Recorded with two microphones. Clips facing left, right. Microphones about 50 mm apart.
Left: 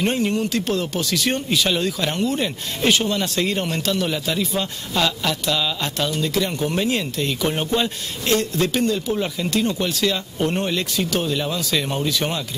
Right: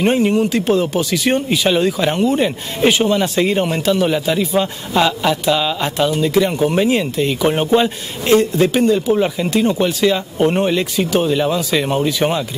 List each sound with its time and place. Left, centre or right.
0.0 s speech: centre